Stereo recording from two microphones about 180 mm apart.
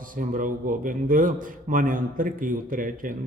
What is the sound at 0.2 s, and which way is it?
A man's voice, 45° right (ahead or behind).